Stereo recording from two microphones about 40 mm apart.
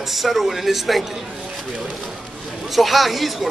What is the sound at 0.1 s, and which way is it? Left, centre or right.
Speech, centre.